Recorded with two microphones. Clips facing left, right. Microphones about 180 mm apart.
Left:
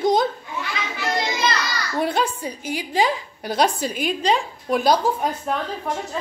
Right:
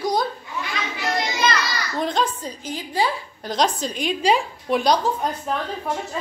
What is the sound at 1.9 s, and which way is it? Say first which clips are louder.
A woman's voice: left 1 dB; 10° left (ahead or behind).